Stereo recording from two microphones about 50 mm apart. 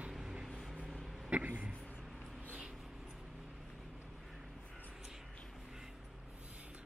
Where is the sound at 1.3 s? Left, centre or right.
Right.